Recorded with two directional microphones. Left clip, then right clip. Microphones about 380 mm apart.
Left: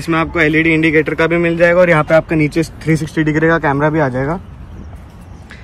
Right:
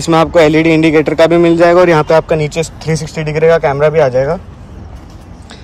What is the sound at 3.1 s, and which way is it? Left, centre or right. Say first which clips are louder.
Speech: right 5 dB; right.